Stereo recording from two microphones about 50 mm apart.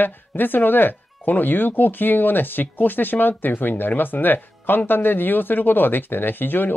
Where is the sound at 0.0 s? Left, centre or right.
Left.